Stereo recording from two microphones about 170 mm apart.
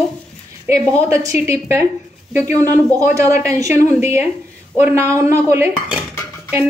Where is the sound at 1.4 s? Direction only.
15° right (ahead or behind).